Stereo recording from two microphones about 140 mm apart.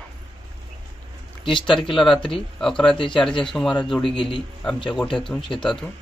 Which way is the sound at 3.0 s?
35° left (ahead or behind).